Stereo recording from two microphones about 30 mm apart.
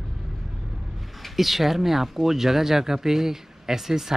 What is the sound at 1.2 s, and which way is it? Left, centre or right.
Speech, centre.